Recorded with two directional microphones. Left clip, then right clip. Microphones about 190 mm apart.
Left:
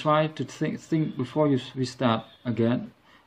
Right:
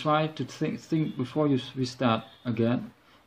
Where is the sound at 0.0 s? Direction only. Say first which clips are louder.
Left 3 dB; 15° left (ahead or behind).